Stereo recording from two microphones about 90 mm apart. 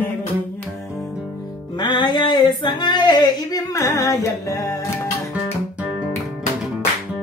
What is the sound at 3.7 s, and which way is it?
Music, 35° left (ahead or behind).